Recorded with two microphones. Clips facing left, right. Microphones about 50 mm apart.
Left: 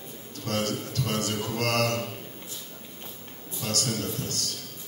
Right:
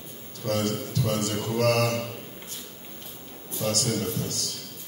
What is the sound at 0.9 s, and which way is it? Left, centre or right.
A man's voice, left.